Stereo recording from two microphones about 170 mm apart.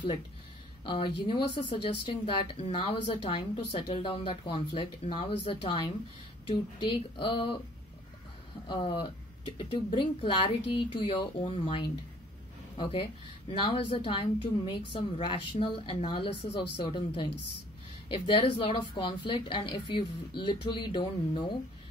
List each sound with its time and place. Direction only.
0.8 s speech: 30° left (ahead or behind)
8.6 s speech: 30° left (ahead or behind)